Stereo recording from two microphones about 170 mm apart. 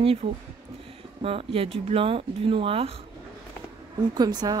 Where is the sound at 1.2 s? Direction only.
35° right (ahead or behind).